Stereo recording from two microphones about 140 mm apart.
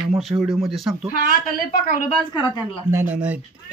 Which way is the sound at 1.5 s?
80° left.